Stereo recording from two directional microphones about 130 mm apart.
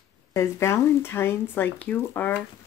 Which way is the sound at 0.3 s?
20° left (ahead or behind).